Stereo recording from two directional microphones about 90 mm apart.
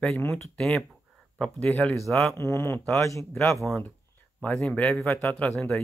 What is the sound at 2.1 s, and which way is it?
Speech, 5° left (ahead or behind).